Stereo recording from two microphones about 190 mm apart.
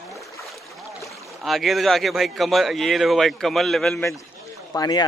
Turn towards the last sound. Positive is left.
turn(degrees=20)  # may be behind; listen again after turning